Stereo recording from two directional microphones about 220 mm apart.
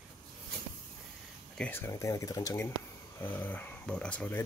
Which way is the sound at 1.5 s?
10° left (ahead or behind).